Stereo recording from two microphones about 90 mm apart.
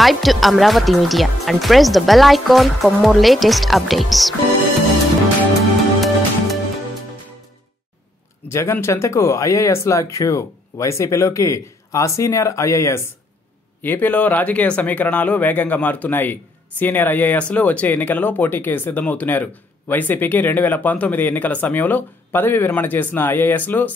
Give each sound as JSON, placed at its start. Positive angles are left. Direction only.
{"t": 0.0, "sound": "speech", "side_deg": 0}
{"t": 5.9, "sound": "music", "side_deg": 0}
{"t": 8.5, "sound": "speech", "side_deg": 30}
{"t": 13.8, "sound": "speech", "side_deg": 20}